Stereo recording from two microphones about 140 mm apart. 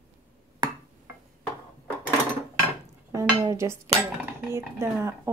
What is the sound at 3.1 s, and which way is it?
Dishes, 20° right (ahead or behind).